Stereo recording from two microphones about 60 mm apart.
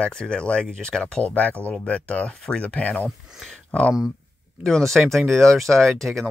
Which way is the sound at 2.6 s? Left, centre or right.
Left.